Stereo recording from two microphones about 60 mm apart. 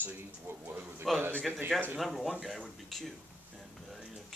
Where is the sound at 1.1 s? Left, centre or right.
Centre.